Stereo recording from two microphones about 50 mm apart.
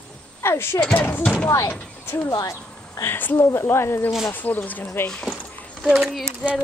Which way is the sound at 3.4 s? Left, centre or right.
Left.